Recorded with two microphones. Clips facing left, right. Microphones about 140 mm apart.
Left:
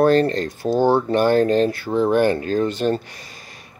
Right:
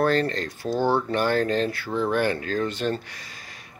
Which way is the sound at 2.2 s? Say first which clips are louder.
Left 6 dB; 45° left (ahead or behind).